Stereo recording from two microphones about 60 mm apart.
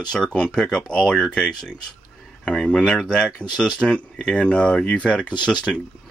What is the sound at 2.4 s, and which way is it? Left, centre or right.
Speech, centre.